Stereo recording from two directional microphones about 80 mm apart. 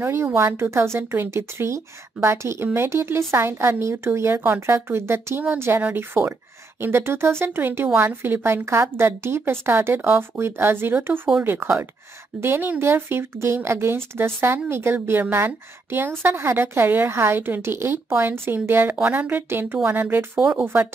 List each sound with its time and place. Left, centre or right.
0.0 s a woman's voice: right